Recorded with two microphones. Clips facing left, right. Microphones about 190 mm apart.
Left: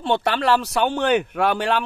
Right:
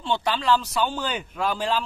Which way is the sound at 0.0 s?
60° left (ahead or behind).